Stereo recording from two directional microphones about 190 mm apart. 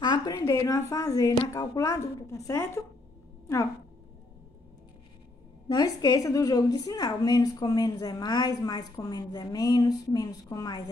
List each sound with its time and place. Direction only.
0.0 s a woman's voice: 20° left (ahead or behind)
5.7 s a woman's voice: 20° left (ahead or behind)